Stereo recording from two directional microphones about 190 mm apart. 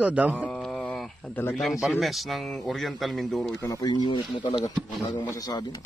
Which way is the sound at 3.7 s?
20° left (ahead or behind).